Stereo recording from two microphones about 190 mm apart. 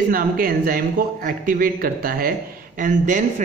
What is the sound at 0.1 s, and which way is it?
A man's voice, 50° right (ahead or behind).